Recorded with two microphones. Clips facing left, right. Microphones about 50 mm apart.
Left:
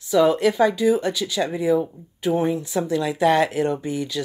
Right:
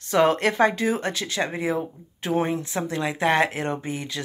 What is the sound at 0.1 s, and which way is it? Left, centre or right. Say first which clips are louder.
Speech: left 2 dB; right.